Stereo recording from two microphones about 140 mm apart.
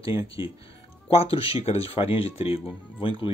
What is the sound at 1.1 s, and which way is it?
Speech, 45° left (ahead or behind).